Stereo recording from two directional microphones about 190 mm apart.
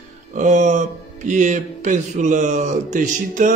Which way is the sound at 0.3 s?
40° right (ahead or behind).